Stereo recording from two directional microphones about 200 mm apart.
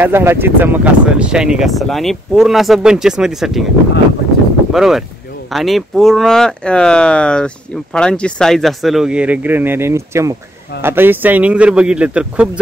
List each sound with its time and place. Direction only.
0.0 s speech: 10° right (ahead or behind)
4.7 s speech: centre (ahead or behind)